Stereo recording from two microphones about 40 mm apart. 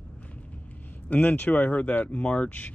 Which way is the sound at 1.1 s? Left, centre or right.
Left.